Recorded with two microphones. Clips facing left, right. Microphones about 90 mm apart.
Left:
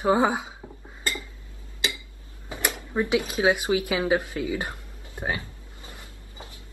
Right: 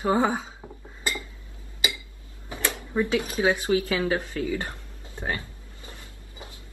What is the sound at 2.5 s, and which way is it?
Speech, 15° left (ahead or behind).